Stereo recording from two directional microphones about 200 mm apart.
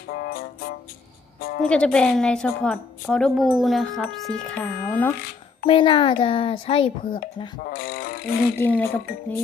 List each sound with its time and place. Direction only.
0.1 s music: 50° left (ahead or behind)
1.4 s speech: 50° left (ahead or behind)
1.7 s speech: 5° left (ahead or behind)
5.7 s a child's voice: 25° left (ahead or behind)
7.6 s a sound: 50° left (ahead or behind)
8.5 s speech: 10° left (ahead or behind)